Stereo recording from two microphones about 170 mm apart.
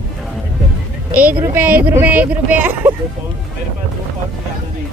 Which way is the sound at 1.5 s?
10° right (ahead or behind).